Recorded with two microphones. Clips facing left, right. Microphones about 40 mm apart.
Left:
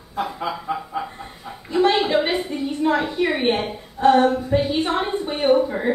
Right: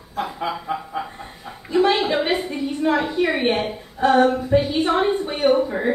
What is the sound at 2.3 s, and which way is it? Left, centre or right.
A woman's voice, centre.